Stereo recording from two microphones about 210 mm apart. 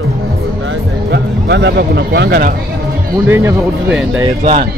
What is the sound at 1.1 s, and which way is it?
Speech, 55° right (ahead or behind).